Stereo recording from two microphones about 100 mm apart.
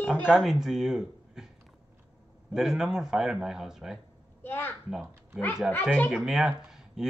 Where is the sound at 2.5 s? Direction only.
5° right (ahead or behind).